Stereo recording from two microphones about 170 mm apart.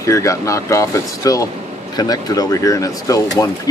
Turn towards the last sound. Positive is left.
turn(degrees=20)  # may be behind; listen again after turning